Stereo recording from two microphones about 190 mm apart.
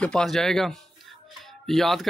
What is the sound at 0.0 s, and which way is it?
Speech, 5° left (ahead or behind).